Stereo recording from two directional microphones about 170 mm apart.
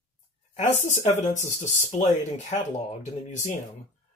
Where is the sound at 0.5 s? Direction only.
45° left (ahead or behind).